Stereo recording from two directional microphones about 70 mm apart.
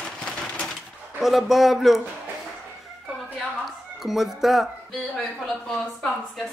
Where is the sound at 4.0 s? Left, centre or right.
Centre.